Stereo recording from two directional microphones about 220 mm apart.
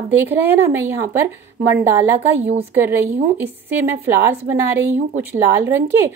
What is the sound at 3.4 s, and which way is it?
A woman's voice, 10° right (ahead or behind).